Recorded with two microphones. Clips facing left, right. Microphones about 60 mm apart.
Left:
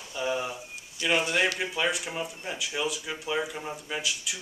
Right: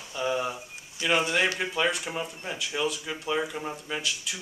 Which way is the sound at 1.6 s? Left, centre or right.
Centre.